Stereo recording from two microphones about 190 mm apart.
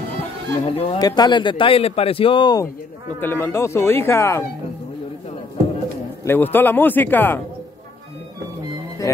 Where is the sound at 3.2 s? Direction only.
10° left (ahead or behind).